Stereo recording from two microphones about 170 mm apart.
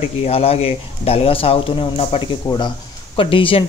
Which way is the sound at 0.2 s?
35° left (ahead or behind).